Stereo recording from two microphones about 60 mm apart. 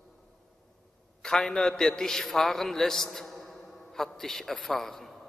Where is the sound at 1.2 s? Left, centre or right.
Centre.